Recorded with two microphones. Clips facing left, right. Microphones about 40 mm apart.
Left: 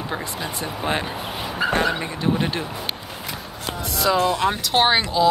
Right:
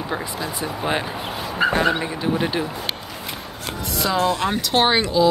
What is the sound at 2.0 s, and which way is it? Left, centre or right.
Speech, centre.